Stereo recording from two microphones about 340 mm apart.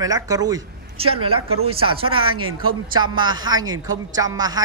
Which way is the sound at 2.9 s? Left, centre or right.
Centre.